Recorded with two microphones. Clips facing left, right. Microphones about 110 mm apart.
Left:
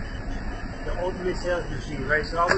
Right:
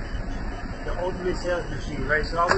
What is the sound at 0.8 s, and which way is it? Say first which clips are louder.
Speech: even; 30° right (ahead or behind).